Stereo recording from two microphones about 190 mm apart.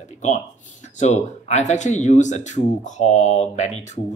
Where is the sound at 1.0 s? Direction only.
35° left (ahead or behind).